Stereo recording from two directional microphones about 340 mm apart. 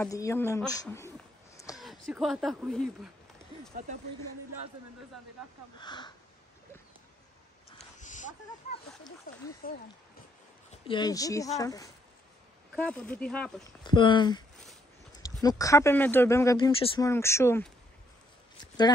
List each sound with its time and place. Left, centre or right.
0.0 s speech: centre
5.8 s speech: centre
8.0 s a sound: left
9.3 s speech: left
10.7 s speech: centre
15.4 s speech: centre